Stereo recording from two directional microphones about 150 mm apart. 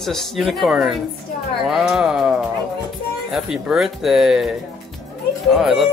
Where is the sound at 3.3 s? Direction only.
Centre (ahead or behind).